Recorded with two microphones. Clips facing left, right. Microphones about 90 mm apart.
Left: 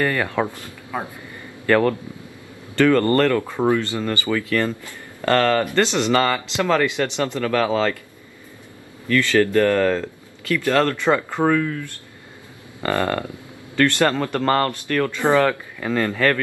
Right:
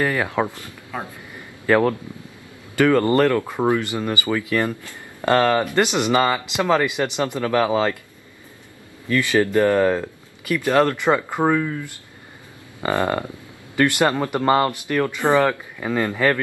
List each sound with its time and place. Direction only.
0.0 s speech: 5° right (ahead or behind)
0.5 s speech: 20° right (ahead or behind)
1.7 s speech: 5° right (ahead or behind)
9.1 s speech: 15° right (ahead or behind)